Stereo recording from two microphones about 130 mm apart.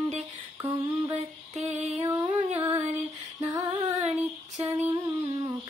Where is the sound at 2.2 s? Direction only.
40° right (ahead or behind).